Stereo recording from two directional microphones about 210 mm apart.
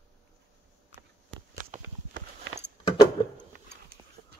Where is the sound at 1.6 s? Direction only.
40° right (ahead or behind).